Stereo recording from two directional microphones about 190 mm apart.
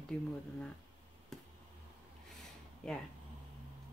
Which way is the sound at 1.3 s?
5° left (ahead or behind).